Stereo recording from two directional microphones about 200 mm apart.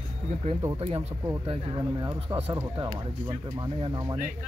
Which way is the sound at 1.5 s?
25° right (ahead or behind).